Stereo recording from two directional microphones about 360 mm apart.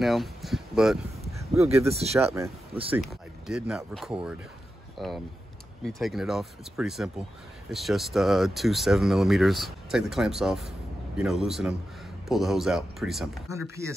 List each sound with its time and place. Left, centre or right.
0.0 s speech: centre
2.9 s speech: centre